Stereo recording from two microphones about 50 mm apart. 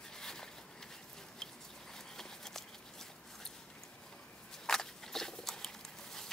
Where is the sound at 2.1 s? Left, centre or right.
Centre.